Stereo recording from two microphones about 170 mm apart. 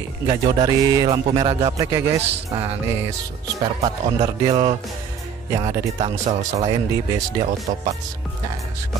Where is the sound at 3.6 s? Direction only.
25° right (ahead or behind); by 6.4 s 40° right (ahead or behind).